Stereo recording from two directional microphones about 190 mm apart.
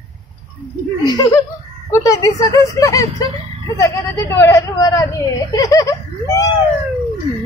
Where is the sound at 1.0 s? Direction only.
20° left (ahead or behind).